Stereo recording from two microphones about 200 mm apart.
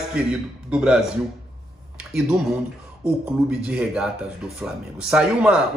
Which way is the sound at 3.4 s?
5° right (ahead or behind).